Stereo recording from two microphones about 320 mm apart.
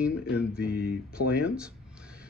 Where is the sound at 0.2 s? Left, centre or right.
Left.